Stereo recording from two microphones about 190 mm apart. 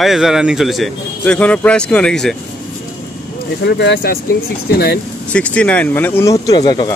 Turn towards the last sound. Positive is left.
turn(degrees=20)  # may be behind; listen again after turning